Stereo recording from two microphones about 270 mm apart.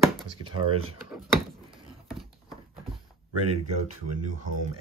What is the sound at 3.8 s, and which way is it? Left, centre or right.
Speech, right.